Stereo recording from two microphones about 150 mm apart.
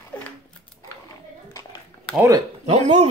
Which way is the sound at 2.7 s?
50° right (ahead or behind).